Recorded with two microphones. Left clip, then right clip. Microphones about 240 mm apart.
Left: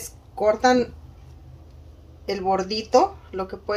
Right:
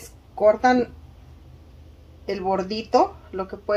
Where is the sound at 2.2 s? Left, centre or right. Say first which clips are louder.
Left 1 dB; right.